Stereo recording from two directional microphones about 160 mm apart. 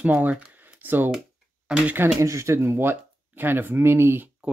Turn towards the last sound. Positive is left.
turn(degrees=-10)  # may be behind; listen again after turning